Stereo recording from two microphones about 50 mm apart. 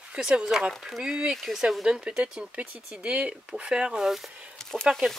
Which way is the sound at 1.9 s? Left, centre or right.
Centre.